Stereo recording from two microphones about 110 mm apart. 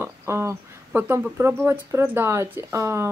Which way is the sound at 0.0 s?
25° right (ahead or behind).